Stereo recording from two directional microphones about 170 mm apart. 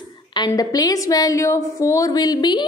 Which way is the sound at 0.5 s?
20° left (ahead or behind).